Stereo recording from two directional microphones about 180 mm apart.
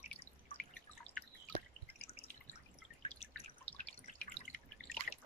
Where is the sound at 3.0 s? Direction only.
35° left (ahead or behind).